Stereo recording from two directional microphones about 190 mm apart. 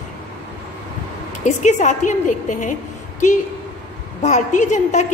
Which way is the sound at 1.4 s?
40° left (ahead or behind).